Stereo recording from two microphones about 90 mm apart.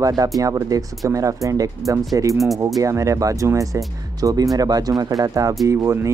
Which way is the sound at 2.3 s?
Centre (ahead or behind).